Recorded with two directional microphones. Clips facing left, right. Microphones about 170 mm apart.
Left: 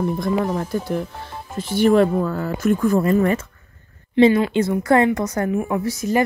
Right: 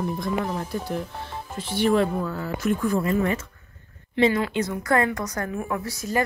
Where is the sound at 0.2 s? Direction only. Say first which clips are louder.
Left 6 dB; 50° left (ahead or behind).